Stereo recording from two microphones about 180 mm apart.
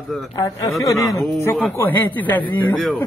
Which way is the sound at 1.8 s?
10° left (ahead or behind).